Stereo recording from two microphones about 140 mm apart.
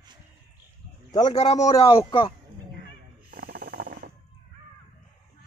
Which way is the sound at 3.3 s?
90° right.